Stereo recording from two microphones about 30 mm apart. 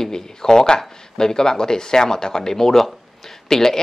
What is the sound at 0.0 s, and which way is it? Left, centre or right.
Speech, centre.